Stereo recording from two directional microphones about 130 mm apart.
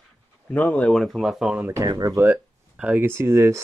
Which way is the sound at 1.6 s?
25° right (ahead or behind).